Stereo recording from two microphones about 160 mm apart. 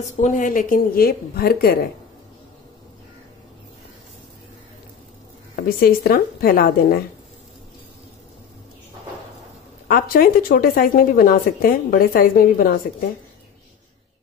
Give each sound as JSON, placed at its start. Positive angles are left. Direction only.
{"t": 0.0, "sound": "speech", "side_deg": 50}
{"t": 5.8, "sound": "speech", "side_deg": 65}
{"t": 9.8, "sound": "speech", "side_deg": 65}